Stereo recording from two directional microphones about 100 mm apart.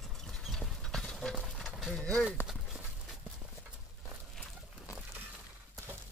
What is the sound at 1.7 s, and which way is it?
Bird, centre (ahead or behind).